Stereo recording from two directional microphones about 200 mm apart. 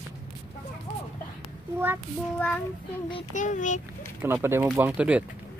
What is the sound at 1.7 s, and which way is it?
Speech, 10° right (ahead or behind).